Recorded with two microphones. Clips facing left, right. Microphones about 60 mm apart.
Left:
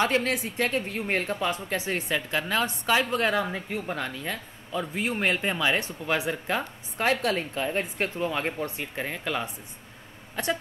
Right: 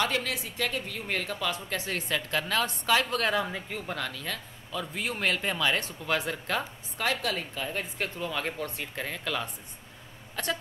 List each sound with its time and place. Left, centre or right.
0.0 s a woman's voice: left
1.6 s a woman's voice: centre
7.0 s a woman's voice: left